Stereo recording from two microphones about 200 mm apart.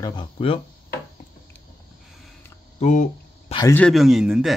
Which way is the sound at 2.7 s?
35° left (ahead or behind).